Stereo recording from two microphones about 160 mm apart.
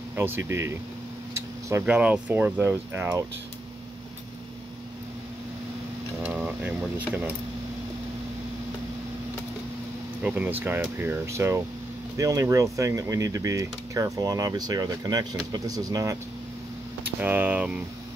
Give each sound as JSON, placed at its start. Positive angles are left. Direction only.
{"t": 0.1, "sound": "speech", "side_deg": -15}
{"t": 6.2, "sound": "a sound", "side_deg": -10}
{"t": 10.2, "sound": "speech", "side_deg": -10}
{"t": 17.0, "sound": "speech", "side_deg": -10}